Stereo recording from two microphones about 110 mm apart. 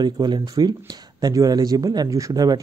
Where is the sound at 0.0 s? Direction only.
40° right (ahead or behind).